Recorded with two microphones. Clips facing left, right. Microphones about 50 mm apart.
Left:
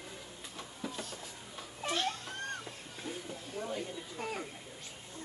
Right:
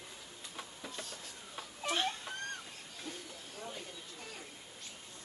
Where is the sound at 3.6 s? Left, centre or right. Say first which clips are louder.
Left 7 dB; centre.